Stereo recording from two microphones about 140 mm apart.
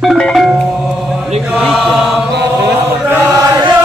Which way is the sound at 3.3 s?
25° right (ahead or behind).